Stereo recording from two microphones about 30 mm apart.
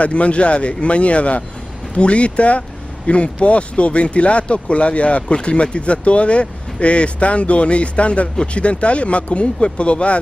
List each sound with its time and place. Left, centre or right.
0.0 s speech: left